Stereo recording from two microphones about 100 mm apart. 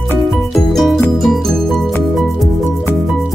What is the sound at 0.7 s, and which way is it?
Music, 5° left (ahead or behind).